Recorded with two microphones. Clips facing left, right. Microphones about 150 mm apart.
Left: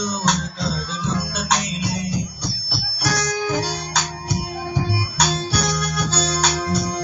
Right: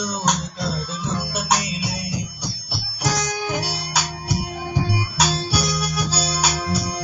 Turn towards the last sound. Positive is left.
turn(degrees=-5)  # may be behind; listen again after turning